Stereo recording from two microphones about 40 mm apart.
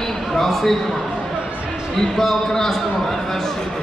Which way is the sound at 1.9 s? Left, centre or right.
Centre.